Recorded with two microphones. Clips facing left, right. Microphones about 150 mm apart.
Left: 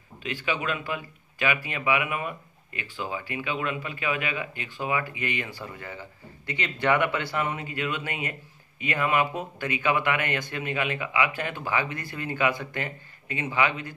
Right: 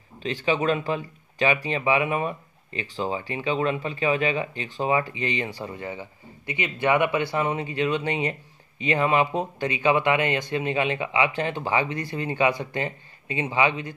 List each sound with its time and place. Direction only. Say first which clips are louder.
0.2 s speech: right 6 dB; 25° right (ahead or behind)